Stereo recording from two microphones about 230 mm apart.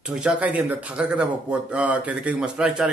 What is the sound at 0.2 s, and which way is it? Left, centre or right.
A man's voice, centre.